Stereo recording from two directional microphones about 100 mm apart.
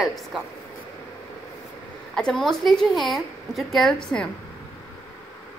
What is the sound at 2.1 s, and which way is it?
A woman's voice, 5° left (ahead or behind).